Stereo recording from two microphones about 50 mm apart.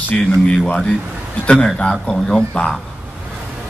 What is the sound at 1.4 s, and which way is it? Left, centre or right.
A man's voice, left.